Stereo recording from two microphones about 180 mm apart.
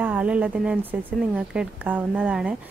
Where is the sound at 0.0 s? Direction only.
10° right (ahead or behind).